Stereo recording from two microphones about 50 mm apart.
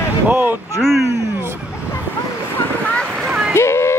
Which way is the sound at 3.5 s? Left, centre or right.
Left.